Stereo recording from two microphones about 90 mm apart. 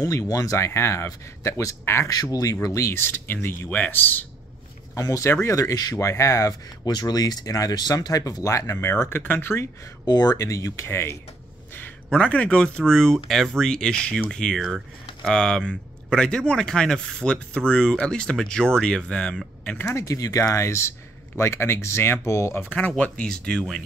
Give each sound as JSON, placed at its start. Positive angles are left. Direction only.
{"t": 0.0, "sound": "speech", "side_deg": 40}
{"t": 3.0, "sound": "speech", "side_deg": 25}
{"t": 4.9, "sound": "speech", "side_deg": 35}
{"t": 10.0, "sound": "speech", "side_deg": 50}
{"t": 10.3, "sound": "speech", "side_deg": 35}
{"t": 12.1, "sound": "speech", "side_deg": 15}
{"t": 19.9, "sound": "speech", "side_deg": 35}